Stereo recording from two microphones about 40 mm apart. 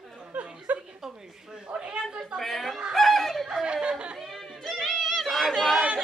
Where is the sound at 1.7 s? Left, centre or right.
Right.